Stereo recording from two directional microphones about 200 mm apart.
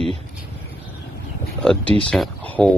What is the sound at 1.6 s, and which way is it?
Speech, 5° left (ahead or behind).